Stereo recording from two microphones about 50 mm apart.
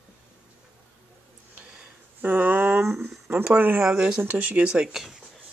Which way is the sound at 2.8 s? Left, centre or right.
Centre.